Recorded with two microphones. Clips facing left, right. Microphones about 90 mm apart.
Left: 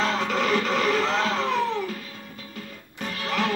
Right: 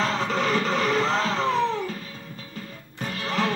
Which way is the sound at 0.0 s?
35° right (ahead or behind).